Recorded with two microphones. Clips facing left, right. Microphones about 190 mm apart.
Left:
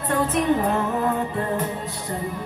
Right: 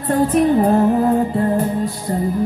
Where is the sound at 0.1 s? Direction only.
35° right (ahead or behind).